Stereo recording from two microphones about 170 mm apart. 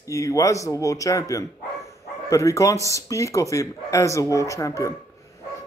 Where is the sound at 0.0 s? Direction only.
20° left (ahead or behind).